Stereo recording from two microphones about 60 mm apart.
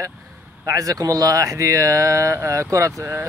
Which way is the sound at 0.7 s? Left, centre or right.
Right.